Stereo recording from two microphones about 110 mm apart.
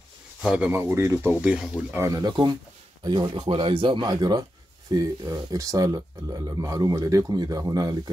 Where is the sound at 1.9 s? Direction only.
30° right (ahead or behind).